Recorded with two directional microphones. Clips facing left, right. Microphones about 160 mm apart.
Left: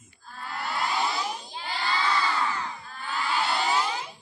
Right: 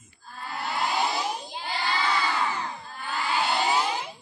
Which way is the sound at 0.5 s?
10° right (ahead or behind).